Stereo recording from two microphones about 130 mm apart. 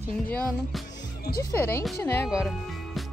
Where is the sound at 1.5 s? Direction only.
20° left (ahead or behind).